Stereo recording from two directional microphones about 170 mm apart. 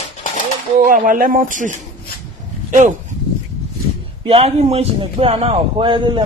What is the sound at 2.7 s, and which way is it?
Speech, 50° right (ahead or behind).